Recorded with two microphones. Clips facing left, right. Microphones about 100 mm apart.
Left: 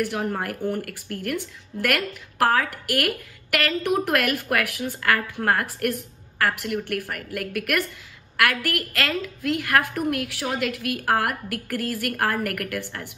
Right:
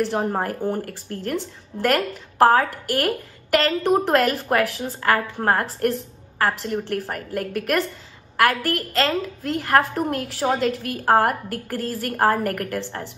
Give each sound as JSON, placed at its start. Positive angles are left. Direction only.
{"t": 0.0, "sound": "a woman's voice", "side_deg": -30}